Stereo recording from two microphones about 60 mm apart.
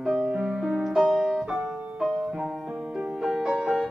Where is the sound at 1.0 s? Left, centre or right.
Centre.